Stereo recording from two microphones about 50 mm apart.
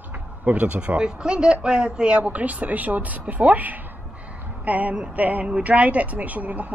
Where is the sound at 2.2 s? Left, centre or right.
Right.